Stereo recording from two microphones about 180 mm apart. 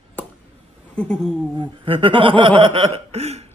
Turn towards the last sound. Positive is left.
turn(degrees=-35)  # may be behind; listen again after turning